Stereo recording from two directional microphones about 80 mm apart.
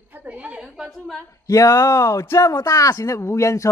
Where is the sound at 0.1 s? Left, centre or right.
Centre.